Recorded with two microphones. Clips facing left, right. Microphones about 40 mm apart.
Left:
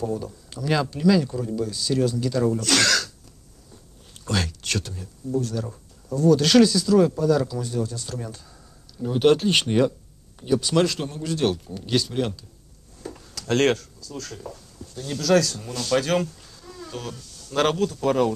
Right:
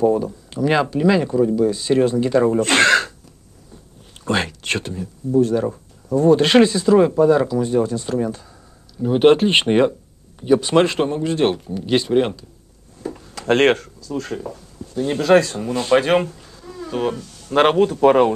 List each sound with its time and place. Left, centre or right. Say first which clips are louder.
0.0 s speech: right 11 dB; right
4.1 s a sound: right 6 dB; right
6.1 s speech: right 4 dB; right